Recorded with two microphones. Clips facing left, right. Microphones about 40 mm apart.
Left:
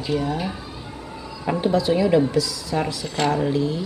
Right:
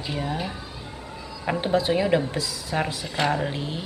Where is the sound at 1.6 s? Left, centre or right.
Right.